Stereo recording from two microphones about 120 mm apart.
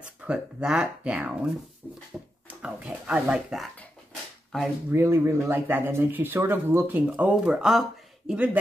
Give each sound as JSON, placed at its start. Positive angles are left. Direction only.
{"t": 0.3, "sound": "speech", "side_deg": -10}
{"t": 2.1, "sound": "a sound", "side_deg": 0}
{"t": 2.6, "sound": "speech", "side_deg": -10}
{"t": 4.9, "sound": "speech", "side_deg": -20}